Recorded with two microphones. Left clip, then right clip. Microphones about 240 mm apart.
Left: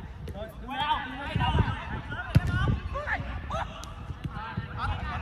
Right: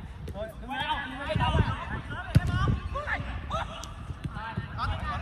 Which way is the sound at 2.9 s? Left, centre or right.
Left.